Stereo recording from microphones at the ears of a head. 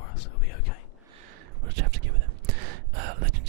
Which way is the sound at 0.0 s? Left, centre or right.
Left.